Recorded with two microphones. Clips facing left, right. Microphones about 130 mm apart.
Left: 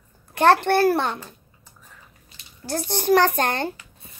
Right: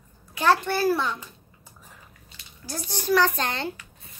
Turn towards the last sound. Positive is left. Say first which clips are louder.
# left 4 dB
turn(degrees=50)  # may be behind; listen again after turning